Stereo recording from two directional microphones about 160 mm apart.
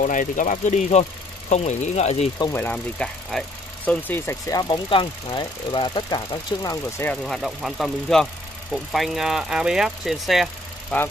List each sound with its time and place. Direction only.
0.0 s speech: 55° left (ahead or behind)
2.5 s speech: 10° left (ahead or behind)
7.1 s speech: centre (ahead or behind)
10.9 s speech: 10° left (ahead or behind)